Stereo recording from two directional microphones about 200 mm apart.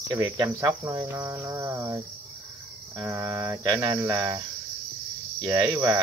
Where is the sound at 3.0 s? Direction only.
15° right (ahead or behind).